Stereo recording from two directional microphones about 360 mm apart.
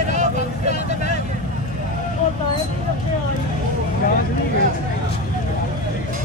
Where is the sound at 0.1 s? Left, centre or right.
Centre.